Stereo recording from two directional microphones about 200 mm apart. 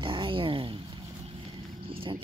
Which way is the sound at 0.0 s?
25° right (ahead or behind).